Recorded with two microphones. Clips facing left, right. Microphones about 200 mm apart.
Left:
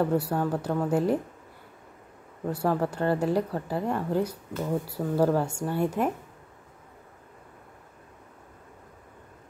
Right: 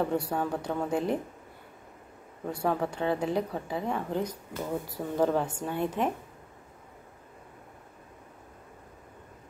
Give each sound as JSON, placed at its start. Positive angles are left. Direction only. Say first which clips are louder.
{"t": 0.0, "sound": "speech", "louder": "left 3 dB", "side_deg": 5}
{"t": 2.4, "sound": "speech", "louder": "left 3 dB", "side_deg": 5}